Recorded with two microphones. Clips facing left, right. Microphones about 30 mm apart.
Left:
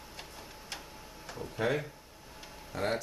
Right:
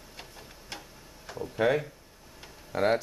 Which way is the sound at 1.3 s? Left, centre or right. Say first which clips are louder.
Right 6 dB; centre.